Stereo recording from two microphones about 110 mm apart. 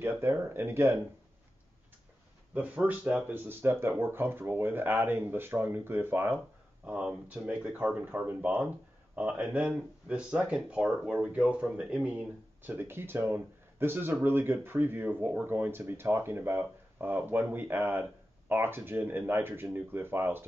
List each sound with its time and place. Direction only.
0.0 s speech: 25° right (ahead or behind)
2.5 s speech: 15° right (ahead or behind)
6.9 s speech: 10° right (ahead or behind)